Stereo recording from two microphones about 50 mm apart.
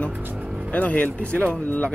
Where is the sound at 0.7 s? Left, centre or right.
Left.